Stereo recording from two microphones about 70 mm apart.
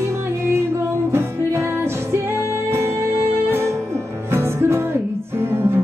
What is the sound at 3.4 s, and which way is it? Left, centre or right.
Music, right.